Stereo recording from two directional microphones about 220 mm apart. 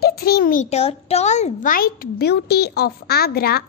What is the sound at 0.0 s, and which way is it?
A child's voice, 45° left (ahead or behind).